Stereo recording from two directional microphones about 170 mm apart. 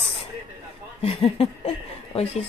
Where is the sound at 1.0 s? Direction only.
35° left (ahead or behind).